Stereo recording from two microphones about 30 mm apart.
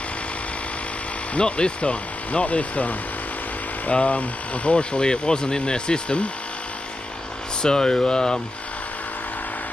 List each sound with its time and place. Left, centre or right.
1.4 s speech: left
1.8 s speech: left
3.9 s speech: left
6.0 s speech: left
7.6 s speech: left